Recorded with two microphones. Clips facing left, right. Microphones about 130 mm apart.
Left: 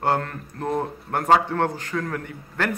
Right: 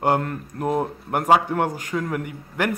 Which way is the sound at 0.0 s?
15° right (ahead or behind).